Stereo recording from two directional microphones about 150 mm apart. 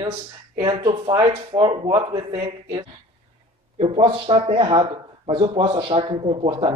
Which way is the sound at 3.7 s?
40° right (ahead or behind).